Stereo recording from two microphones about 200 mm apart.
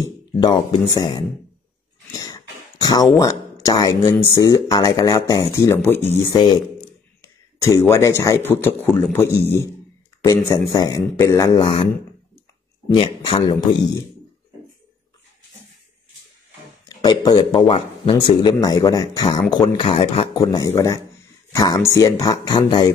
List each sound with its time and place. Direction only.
0.0 s a man's voice: 20° left (ahead or behind)
2.1 s a sound: 20° left (ahead or behind)
3.6 s a man's voice: 20° left (ahead or behind)
7.6 s a man's voice: 15° left (ahead or behind)
17.0 s a man's voice: 20° left (ahead or behind)